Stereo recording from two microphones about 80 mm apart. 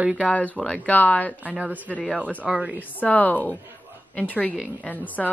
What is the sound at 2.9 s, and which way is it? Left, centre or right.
A woman's voice, centre.